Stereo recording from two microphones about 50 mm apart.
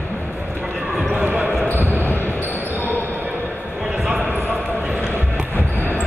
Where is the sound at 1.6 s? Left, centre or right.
Left.